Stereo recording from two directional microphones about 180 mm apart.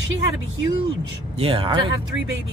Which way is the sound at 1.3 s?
30° right (ahead or behind).